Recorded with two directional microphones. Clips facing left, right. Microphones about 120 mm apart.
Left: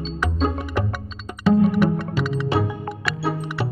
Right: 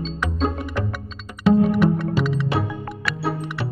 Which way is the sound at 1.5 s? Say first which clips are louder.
Even; centre (ahead or behind).